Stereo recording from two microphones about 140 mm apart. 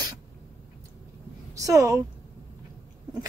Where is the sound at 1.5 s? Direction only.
20° right (ahead or behind).